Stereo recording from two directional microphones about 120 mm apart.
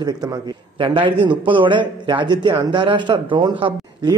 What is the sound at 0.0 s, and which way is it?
A man's voice, 35° right (ahead or behind).